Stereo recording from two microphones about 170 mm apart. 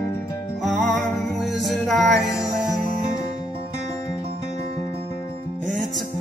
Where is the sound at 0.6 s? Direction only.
Centre (ahead or behind).